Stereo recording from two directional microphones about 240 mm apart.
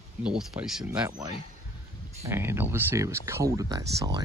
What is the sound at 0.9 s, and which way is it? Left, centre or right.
Speech, centre.